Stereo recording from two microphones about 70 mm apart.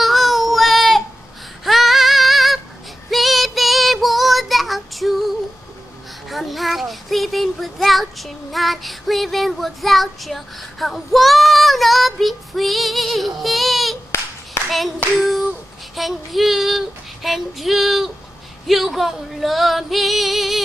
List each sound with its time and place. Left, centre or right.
0.0 s child singing: centre
1.6 s female singing: centre
3.1 s child singing: centre
14.6 s clapping: left
16.0 s child singing: centre
18.7 s female singing: centre